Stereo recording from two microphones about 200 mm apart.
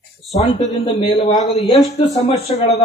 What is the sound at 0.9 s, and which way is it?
Speech, 35° left (ahead or behind).